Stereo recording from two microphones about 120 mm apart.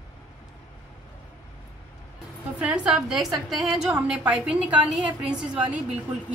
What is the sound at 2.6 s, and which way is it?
A woman's voice, 10° right (ahead or behind).